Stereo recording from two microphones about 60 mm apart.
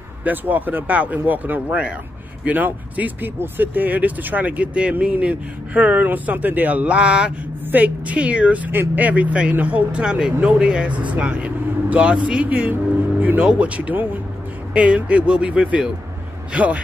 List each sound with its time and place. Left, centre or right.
0.2 s speech: right
1.7 s speech: centre
2.4 s speech: right